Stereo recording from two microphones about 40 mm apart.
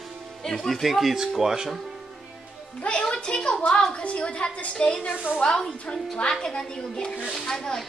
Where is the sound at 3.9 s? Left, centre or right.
Left.